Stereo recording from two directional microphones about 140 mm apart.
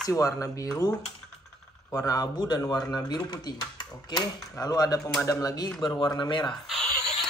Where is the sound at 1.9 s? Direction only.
25° left (ahead or behind).